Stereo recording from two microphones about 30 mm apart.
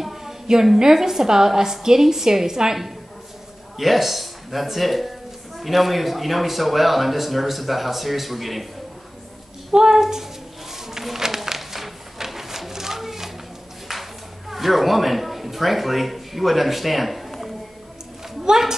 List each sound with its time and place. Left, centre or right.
0.0 s a sound: centre
0.7 s a woman's voice: centre
3.7 s a man's voice: centre
9.7 s a woman's voice: centre
10.7 s a sound: centre
14.5 s speech: centre